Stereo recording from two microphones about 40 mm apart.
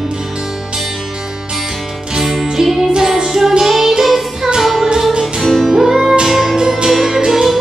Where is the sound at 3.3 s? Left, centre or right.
Centre.